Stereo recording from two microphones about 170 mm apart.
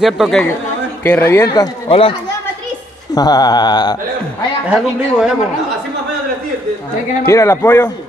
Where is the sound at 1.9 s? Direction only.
30° left (ahead or behind).